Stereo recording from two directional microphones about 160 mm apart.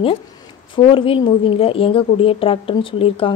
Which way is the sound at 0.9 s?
35° left (ahead or behind).